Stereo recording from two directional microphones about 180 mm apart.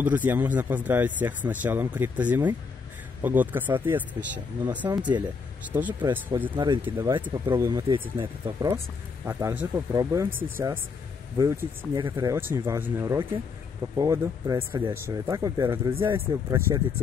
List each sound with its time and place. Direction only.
0.0 s speech: 10° right (ahead or behind)
4.8 s speech: 25° right (ahead or behind)
5.7 s speech: 10° right (ahead or behind)
6.5 s speech: 25° right (ahead or behind)
9.2 s speech: 15° right (ahead or behind)